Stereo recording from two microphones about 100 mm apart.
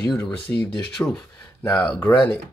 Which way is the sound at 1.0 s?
15° left (ahead or behind).